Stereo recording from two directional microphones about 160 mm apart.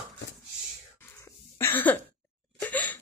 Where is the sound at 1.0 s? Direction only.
15° left (ahead or behind).